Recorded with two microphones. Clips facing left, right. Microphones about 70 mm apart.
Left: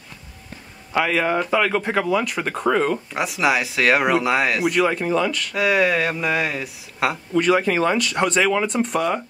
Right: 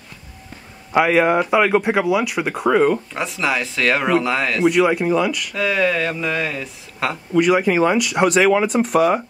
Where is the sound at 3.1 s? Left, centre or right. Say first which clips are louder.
Left 1 dB; centre.